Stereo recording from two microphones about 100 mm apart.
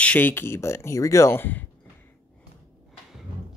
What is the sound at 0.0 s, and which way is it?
Speech, 15° left (ahead or behind).